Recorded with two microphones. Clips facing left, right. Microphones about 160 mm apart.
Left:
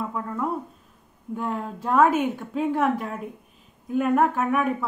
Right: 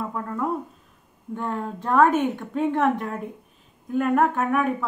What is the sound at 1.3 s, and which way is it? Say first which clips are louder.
A woman's voice: even; 5° left (ahead or behind).